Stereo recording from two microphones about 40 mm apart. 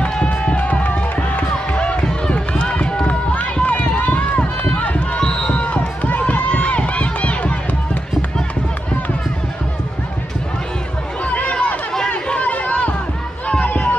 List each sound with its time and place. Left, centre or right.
0.0 s music: left
1.8 s run: left
5.2 s run: left
5.5 s run: left
11.2 s a sound: left
12.1 s chatter: left
13.5 s a sound: left